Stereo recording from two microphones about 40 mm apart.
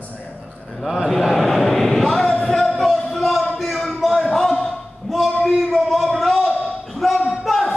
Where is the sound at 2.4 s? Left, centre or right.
Centre.